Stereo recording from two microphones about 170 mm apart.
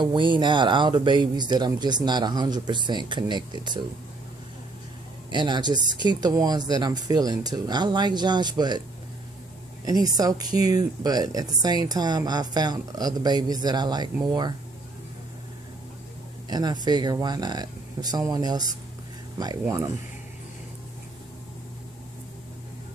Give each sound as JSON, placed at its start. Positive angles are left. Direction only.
{"t": 0.0, "sound": "speech", "side_deg": -30}
{"t": 5.3, "sound": "speech", "side_deg": -25}
{"t": 9.8, "sound": "speech", "side_deg": -20}
{"t": 16.4, "sound": "speech", "side_deg": -25}